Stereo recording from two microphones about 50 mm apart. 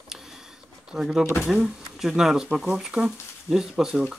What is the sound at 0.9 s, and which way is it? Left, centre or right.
Speech, centre.